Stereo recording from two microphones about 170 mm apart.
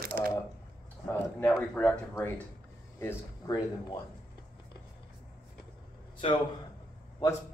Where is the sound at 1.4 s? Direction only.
10° left (ahead or behind).